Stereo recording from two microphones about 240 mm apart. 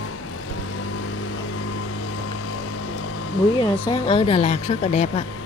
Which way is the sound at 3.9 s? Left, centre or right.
Left.